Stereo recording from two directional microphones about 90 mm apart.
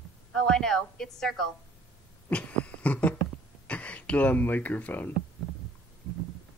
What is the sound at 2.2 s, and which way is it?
Beatboxing, 15° left (ahead or behind).